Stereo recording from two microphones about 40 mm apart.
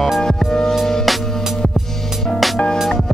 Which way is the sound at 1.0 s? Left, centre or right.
Centre.